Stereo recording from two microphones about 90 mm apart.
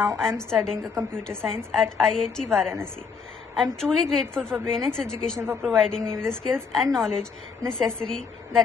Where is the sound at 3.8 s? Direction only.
5° left (ahead or behind).